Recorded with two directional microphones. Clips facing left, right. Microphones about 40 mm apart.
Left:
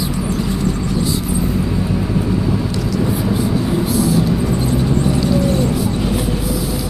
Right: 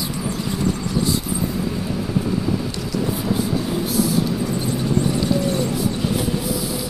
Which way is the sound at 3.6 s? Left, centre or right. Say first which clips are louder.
Left 4 dB; left.